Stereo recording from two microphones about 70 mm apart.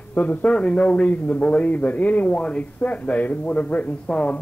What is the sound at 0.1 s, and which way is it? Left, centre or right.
A man's voice, left.